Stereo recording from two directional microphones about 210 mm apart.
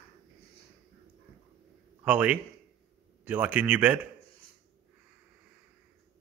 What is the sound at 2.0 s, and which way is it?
Speech, 5° right (ahead or behind).